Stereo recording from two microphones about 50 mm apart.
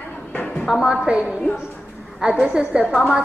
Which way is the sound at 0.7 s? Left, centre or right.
Centre.